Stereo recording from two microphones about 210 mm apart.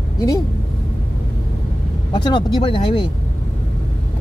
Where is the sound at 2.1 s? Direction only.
20° left (ahead or behind).